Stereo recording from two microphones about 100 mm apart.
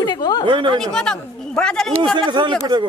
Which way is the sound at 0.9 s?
10° left (ahead or behind).